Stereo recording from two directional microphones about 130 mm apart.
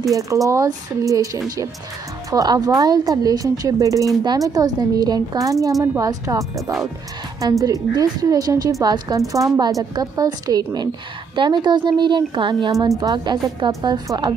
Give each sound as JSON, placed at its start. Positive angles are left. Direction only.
{"t": 0.0, "sound": "a woman's voice", "side_deg": -25}